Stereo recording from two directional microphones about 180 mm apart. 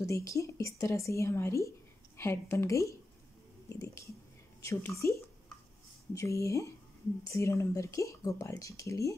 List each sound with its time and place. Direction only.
0.0 s speech: 15° left (ahead or behind)
3.6 s whispering: 15° left (ahead or behind)
4.6 s speech: 15° left (ahead or behind)